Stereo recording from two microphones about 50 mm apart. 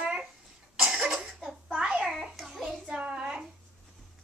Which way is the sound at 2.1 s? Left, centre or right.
Centre.